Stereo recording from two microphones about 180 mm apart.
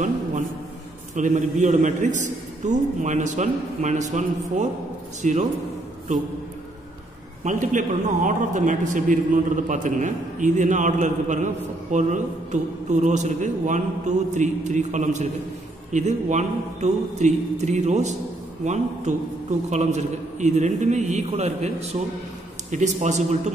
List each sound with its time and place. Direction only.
1.1 s a man's voice: 40° right (ahead or behind)
7.4 s a man's voice: 45° right (ahead or behind)